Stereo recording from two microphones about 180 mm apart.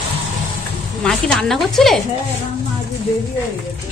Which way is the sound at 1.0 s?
5° left (ahead or behind).